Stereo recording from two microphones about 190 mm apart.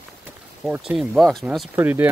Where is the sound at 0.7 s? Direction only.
5° right (ahead or behind).